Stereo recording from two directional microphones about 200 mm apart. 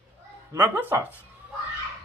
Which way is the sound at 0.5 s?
10° right (ahead or behind).